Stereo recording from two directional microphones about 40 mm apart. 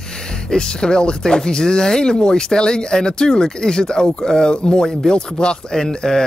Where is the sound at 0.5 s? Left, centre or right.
Centre.